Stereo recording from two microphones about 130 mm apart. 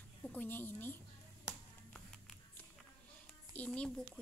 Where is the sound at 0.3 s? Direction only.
15° left (ahead or behind).